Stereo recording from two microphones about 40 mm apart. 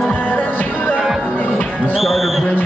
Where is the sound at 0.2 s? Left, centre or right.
Left.